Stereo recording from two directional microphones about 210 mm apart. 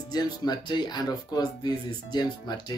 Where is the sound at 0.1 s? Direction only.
20° left (ahead or behind).